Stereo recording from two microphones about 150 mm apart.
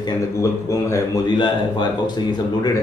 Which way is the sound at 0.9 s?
25° left (ahead or behind).